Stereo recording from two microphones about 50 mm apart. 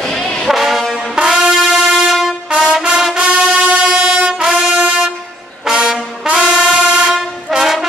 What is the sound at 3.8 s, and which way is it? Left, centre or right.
Train, centre.